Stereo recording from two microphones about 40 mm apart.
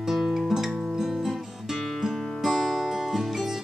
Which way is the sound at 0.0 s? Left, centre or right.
Centre.